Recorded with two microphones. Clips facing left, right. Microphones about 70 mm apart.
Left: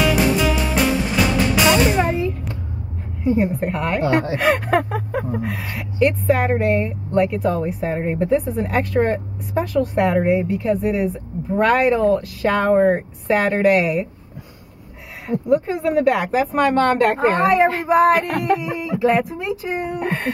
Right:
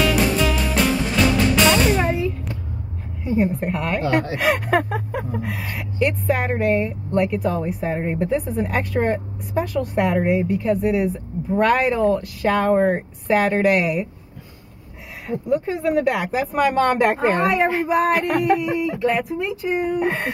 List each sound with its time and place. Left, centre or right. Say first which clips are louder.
0.0 s music: left 2 dB; centre
2.1 s a sound: left 1 dB; centre
3.3 s speech: left 2 dB; centre
15.2 s speech: left 3 dB; centre
17.2 s speech: left 3 dB; centre